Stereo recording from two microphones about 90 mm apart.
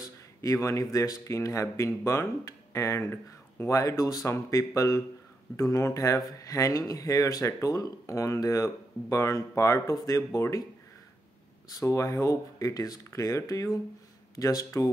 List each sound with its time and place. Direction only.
0.0 s speech: 40° left (ahead or behind)
11.8 s speech: 35° left (ahead or behind)